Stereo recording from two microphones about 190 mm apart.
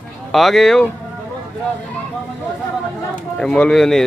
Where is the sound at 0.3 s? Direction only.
Centre (ahead or behind).